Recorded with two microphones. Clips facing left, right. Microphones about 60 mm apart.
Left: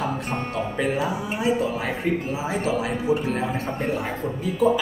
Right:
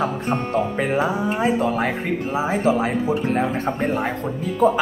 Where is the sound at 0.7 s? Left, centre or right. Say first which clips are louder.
Right 3 dB; right.